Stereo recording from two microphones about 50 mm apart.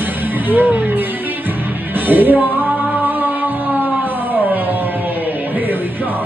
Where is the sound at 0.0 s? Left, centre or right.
Right.